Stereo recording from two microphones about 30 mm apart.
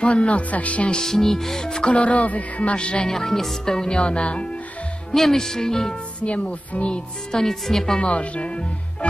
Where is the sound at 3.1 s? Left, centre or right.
Centre.